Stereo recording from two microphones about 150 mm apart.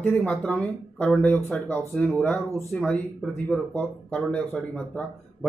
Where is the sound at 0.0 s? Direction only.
15° left (ahead or behind).